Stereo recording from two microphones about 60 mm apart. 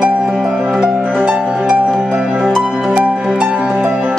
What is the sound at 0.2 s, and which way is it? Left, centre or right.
Music, centre.